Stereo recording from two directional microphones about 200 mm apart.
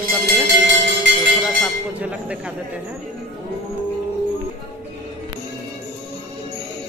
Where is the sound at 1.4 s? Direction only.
5° right (ahead or behind).